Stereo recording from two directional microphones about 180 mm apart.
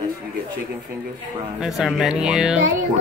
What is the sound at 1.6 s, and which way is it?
Speech, centre (ahead or behind).